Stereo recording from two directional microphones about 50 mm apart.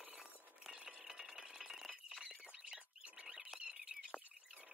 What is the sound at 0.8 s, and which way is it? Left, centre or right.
Rattle, centre.